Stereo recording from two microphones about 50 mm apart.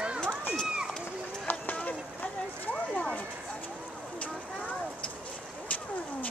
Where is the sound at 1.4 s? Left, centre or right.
Left.